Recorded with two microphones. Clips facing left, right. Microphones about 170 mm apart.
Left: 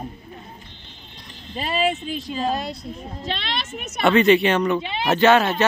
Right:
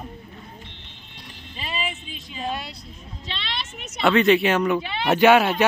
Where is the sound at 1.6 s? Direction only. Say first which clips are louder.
Left 9 dB; 50° left (ahead or behind).